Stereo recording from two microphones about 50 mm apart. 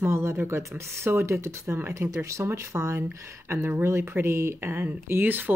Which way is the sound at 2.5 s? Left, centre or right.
Right.